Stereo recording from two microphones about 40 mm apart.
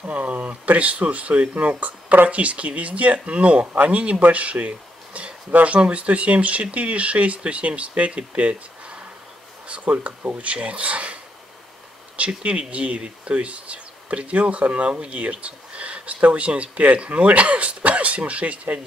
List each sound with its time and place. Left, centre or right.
0.0 s speech: right
12.2 s speech: right